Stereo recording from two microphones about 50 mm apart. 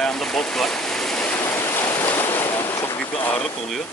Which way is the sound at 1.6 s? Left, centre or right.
Left.